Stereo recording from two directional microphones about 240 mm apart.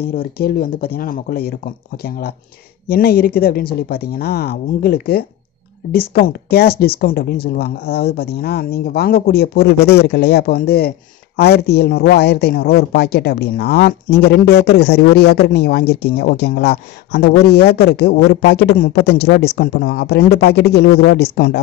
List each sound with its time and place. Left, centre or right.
0.2 s speech: left